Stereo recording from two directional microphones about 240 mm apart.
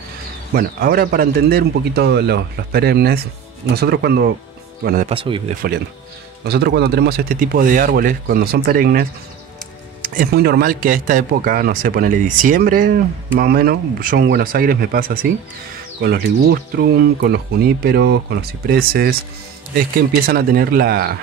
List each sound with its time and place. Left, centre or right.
0.6 s speech: right
5.1 s speech: right
5.5 s speech: right
10.0 s speech: right